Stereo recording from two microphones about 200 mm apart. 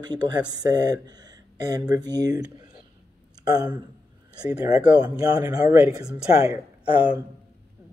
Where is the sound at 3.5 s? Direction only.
20° right (ahead or behind).